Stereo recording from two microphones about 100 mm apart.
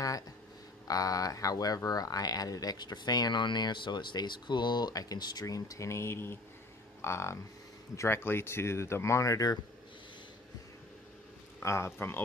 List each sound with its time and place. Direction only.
0.8 s speech: 35° left (ahead or behind)
11.6 s speech: 25° left (ahead or behind)